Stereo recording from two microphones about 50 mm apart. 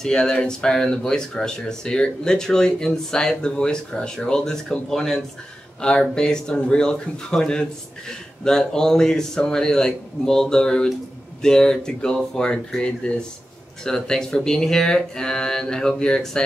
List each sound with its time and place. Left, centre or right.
0.0 s speech: centre